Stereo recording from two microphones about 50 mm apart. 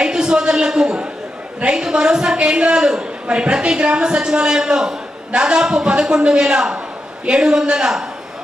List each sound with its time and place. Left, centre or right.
0.0 s a woman's voice: centre